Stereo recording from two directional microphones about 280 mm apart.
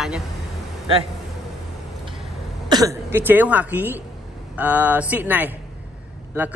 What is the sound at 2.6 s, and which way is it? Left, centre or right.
Speech, centre.